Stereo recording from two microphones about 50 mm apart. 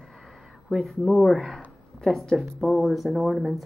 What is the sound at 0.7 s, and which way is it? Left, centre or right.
Speech, centre.